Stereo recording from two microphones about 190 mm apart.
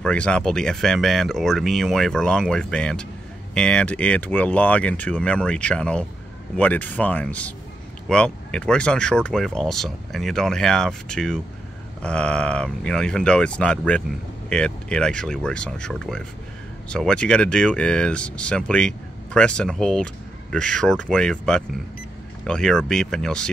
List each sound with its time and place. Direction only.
0.0 s speech: 5° left (ahead or behind)